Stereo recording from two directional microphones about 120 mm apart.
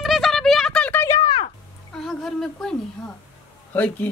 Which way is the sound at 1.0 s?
30° left (ahead or behind).